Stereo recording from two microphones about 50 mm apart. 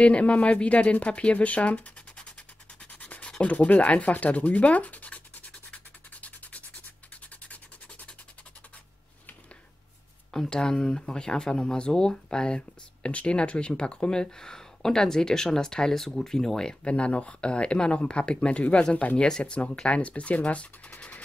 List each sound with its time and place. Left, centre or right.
0.0 s speech: left
2.8 s dog: left
3.5 s speech: left
6.2 s rub: left
7.4 s a sound: left
10.5 s speech: centre